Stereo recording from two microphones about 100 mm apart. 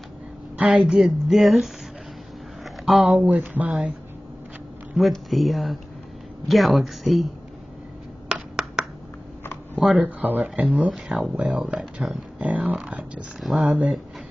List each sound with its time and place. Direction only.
0.6 s speech: 5° right (ahead or behind)
2.6 s a sound: centre (ahead or behind)
3.2 s speech: 15° right (ahead or behind)
4.9 s speech: centre (ahead or behind)
9.8 s speech: 5° right (ahead or behind)
10.0 s speech: 15° right (ahead or behind)
10.9 s speech: centre (ahead or behind)
11.3 s speech: 15° right (ahead or behind)
11.6 s speech: centre (ahead or behind)
12.4 s speech: 15° right (ahead or behind)
13.7 s speech: 15° right (ahead or behind)